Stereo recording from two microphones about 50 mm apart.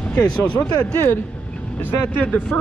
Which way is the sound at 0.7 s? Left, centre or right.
Left.